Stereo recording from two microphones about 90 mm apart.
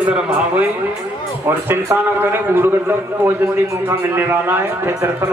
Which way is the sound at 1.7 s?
25° right (ahead or behind).